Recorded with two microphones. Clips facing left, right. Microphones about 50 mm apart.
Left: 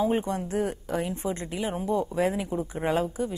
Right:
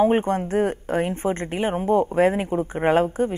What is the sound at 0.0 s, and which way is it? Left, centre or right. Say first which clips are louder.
Speech: right 7 dB; right.